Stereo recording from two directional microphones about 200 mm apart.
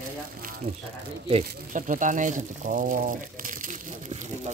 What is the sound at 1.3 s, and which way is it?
Speech, 35° right (ahead or behind).